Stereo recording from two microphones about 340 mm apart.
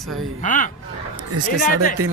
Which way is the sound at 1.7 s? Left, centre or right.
Left.